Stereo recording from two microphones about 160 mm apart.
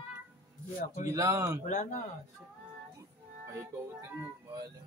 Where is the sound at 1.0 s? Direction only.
20° right (ahead or behind).